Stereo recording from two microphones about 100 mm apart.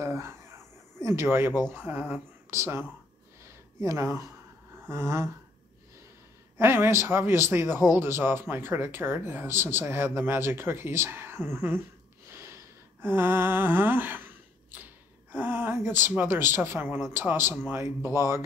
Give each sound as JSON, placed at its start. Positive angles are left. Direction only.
{"t": 0.0, "sound": "a sound", "side_deg": -30}
{"t": 1.0, "sound": "speech", "side_deg": -25}
{"t": 3.8, "sound": "speech", "side_deg": -30}
{"t": 6.6, "sound": "speech", "side_deg": -25}
{"t": 12.3, "sound": "gasp", "side_deg": -25}
{"t": 13.0, "sound": "a sound", "side_deg": -20}
{"t": 15.3, "sound": "speech", "side_deg": -20}